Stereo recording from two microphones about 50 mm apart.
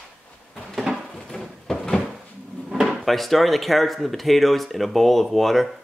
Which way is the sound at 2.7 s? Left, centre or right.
Centre.